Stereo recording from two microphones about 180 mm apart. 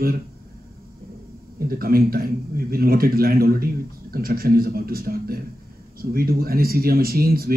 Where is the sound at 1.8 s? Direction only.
55° right (ahead or behind).